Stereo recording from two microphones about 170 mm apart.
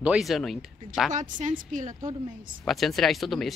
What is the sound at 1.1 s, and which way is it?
A woman's voice, 45° right (ahead or behind).